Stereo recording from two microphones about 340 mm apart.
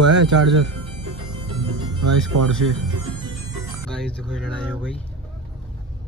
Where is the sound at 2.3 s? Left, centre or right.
Right.